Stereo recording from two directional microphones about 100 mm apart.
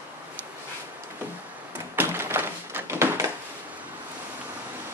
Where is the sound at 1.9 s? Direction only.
25° right (ahead or behind).